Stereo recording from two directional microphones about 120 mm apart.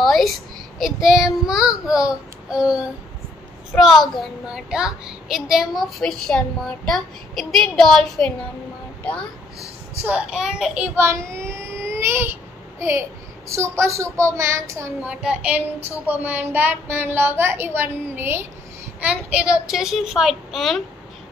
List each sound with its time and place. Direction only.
0.0 s a child's voice: centre (ahead or behind)
3.7 s a child's voice: centre (ahead or behind)
9.0 s speech: 10° left (ahead or behind)
10.0 s a woman's voice: 10° right (ahead or behind)
11.0 s child singing: 25° right (ahead or behind)
13.5 s a child's voice: 25° right (ahead or behind)
15.0 s a woman's voice: 10° right (ahead or behind)